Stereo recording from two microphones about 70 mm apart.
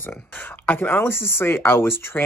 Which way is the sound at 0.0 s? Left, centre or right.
Left.